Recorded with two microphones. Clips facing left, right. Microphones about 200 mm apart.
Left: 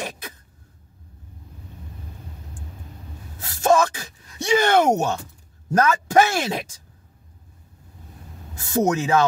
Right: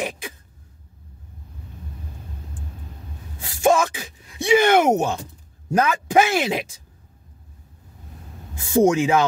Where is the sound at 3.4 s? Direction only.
10° right (ahead or behind).